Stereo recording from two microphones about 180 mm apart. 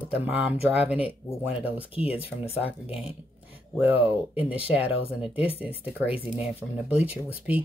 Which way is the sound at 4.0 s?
10° right (ahead or behind).